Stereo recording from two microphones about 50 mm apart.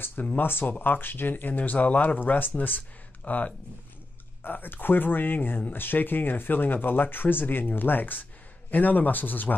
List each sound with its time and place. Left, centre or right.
0.4 s speech: left